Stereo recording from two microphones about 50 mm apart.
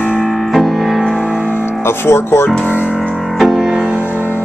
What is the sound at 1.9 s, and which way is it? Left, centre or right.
Speech, left.